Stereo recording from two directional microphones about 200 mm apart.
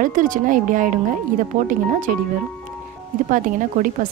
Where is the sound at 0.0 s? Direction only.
40° right (ahead or behind).